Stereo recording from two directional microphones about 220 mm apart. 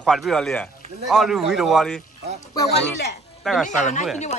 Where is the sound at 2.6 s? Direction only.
50° left (ahead or behind).